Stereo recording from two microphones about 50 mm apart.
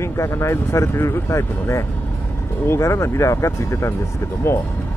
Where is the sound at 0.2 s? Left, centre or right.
Left.